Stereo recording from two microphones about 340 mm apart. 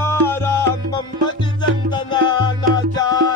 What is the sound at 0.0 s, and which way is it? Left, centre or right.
Music, centre.